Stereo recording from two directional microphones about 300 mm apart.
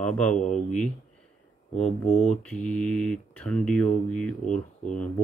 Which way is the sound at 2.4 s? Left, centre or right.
Centre.